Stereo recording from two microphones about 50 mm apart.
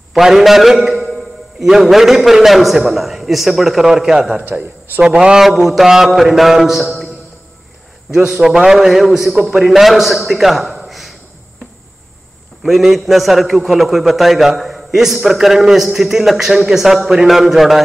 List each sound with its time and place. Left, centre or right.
0.1 s a man's voice: centre
5.4 s a man's voice: centre
8.3 s a man's voice: centre
12.6 s a man's voice: centre